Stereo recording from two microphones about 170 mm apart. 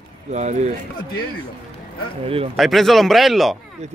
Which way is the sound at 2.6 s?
Centre (ahead or behind).